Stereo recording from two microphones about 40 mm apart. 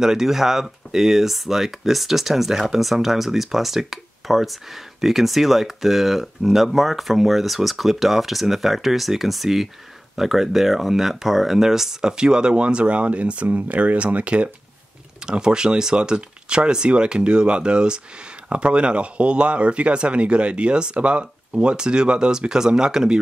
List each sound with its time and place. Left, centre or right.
0.0 s speech: centre; by 14.5 s right
15.2 s speech: centre